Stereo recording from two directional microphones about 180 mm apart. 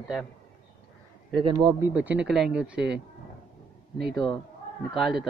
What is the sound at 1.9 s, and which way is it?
Speech, 5° right (ahead or behind).